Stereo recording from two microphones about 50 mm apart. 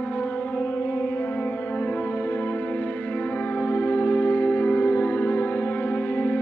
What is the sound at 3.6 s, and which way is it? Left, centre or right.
Music, left.